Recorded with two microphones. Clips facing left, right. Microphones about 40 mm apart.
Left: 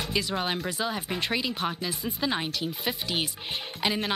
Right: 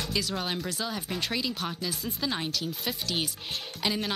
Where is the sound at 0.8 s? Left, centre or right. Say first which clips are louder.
Left 3 dB; centre.